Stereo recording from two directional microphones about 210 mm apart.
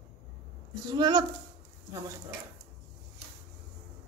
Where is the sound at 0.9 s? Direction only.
20° right (ahead or behind).